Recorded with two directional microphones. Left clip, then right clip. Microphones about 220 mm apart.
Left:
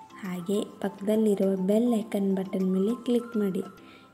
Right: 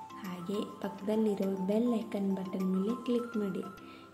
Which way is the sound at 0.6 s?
25° left (ahead or behind).